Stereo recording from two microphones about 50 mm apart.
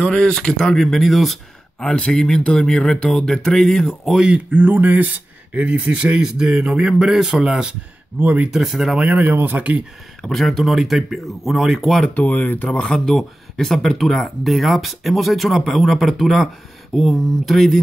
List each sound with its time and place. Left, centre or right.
0.0 s speech: centre
4.5 s speech: right
5.5 s a man's voice: right
8.2 s speech: right
8.5 s a man's voice: centre
8.9 s speech: right
10.2 s speech: centre
12.1 s speech: left
12.8 s speech: centre